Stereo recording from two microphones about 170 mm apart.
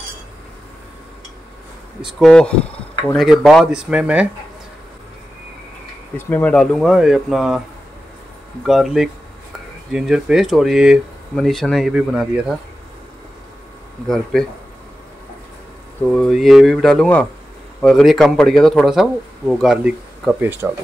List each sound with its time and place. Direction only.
2.0 s speech: 5° right (ahead or behind)
6.1 s speech: 10° left (ahead or behind)
8.6 s speech: 5° right (ahead or behind)
14.0 s speech: centre (ahead or behind)
16.1 s speech: centre (ahead or behind)